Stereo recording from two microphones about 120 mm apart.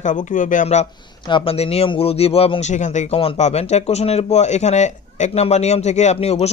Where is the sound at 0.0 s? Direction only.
90° left.